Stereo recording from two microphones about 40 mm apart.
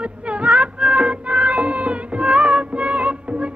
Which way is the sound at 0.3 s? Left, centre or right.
Right.